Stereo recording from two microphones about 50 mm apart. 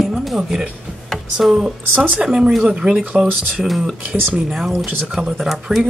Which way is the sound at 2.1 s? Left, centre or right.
Centre.